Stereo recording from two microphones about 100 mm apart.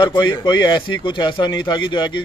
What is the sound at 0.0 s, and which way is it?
A man's voice, 50° left (ahead or behind).